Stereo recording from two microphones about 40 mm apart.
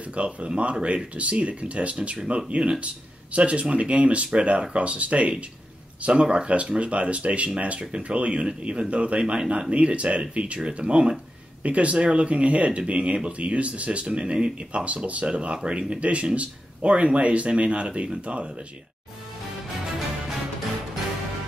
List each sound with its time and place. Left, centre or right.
0.1 s speech: right